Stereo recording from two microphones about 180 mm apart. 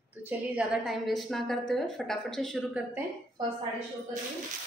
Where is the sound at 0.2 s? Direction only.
10° right (ahead or behind).